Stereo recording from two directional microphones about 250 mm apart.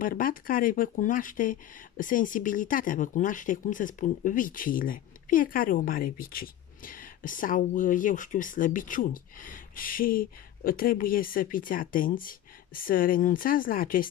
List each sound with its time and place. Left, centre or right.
0.0 s speech: left